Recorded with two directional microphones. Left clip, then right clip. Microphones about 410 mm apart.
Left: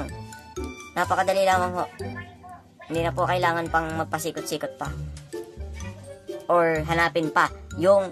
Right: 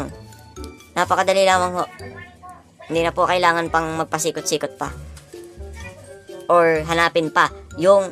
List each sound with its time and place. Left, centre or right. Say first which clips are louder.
0.9 s speech: right 5 dB; left
2.9 s speech: right 6 dB; left
6.4 s speech: right 6 dB; left